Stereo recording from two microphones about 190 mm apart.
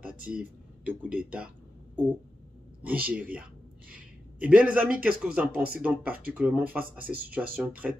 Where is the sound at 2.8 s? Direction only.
10° right (ahead or behind).